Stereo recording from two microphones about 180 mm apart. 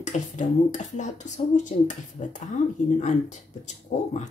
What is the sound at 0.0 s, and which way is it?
A woman's voice, 40° left (ahead or behind).